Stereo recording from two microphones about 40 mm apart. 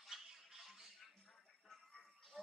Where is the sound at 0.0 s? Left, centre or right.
Centre.